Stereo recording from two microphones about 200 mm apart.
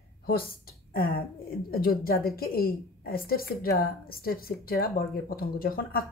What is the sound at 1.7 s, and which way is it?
A woman's voice, 50° left (ahead or behind).